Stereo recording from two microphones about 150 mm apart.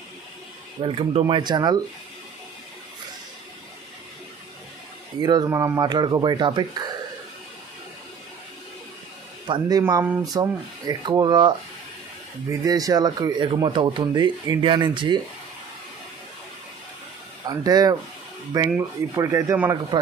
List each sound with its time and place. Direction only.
0.7 s speech: 35° right (ahead or behind)
5.2 s speech: 25° right (ahead or behind)
9.5 s speech: 25° right (ahead or behind)
17.5 s speech: 25° right (ahead or behind)